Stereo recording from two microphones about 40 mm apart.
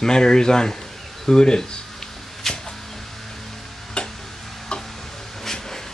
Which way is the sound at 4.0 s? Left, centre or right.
Left.